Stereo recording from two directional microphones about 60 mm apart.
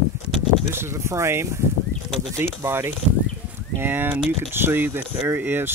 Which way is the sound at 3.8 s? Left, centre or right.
Right.